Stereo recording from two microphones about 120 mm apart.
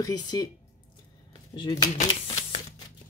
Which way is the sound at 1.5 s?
40° left (ahead or behind).